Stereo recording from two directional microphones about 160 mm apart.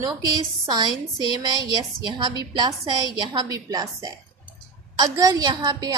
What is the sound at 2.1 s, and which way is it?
A woman's voice, 25° right (ahead or behind).